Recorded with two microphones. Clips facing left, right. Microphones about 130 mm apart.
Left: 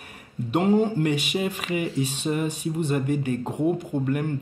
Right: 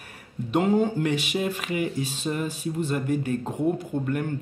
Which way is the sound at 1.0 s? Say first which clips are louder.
Left 1 dB; 50° left (ahead or behind).